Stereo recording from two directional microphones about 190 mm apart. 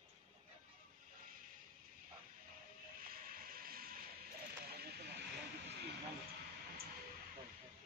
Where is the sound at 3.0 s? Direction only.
50° right (ahead or behind).